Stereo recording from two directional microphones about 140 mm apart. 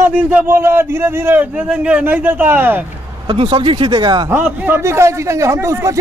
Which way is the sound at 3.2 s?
35° right (ahead or behind).